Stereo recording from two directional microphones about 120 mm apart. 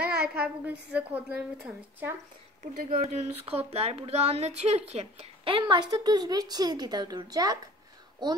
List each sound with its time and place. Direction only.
0.3 s a woman's voice: 15° right (ahead or behind)
2.6 s speech: 70° right (ahead or behind); by 7.7 s 30° right (ahead or behind)